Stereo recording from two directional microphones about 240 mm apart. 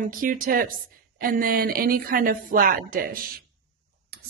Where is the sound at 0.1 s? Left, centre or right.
Right.